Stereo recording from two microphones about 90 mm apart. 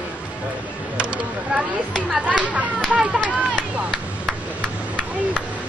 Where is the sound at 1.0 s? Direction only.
10° right (ahead or behind).